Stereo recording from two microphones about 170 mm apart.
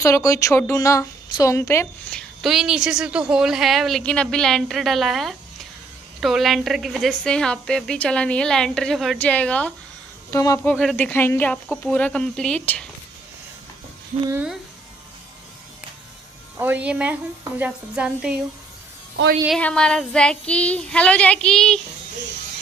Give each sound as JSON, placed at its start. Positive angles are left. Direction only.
{"t": 0.0, "sound": "speech", "side_deg": 20}
{"t": 2.0, "sound": "a woman's voice", "side_deg": 0}
{"t": 10.3, "sound": "speech", "side_deg": 20}
{"t": 14.3, "sound": "a woman's voice", "side_deg": -5}
{"t": 16.5, "sound": "a woman's voice", "side_deg": -10}
{"t": 19.6, "sound": "a woman's voice", "side_deg": 5}